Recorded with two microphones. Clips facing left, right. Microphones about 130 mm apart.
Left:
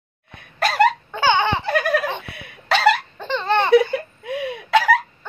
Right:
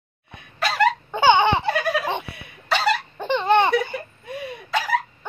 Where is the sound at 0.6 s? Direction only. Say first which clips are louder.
Left 4 dB; 50° left (ahead or behind).